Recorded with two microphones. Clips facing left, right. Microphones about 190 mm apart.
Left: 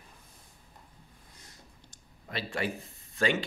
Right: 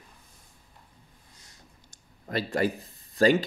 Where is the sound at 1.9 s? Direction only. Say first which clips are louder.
Right 8 dB; 45° right (ahead or behind).